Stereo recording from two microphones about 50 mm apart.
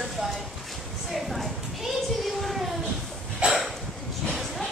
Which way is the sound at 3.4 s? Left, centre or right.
Right.